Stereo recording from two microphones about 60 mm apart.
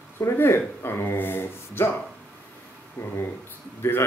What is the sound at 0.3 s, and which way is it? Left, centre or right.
Speech, left.